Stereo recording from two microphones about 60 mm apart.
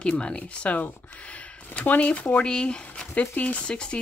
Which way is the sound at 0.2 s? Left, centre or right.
Centre.